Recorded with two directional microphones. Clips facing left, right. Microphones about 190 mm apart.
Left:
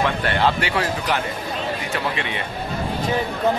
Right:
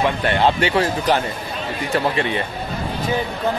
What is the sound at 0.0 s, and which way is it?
Speech, 20° right (ahead or behind).